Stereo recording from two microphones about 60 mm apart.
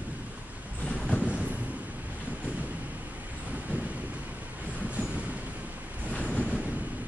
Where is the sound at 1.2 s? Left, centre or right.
Right.